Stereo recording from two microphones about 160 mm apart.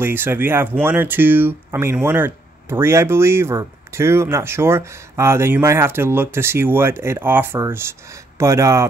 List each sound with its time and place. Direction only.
0.0 s speech: 15° right (ahead or behind)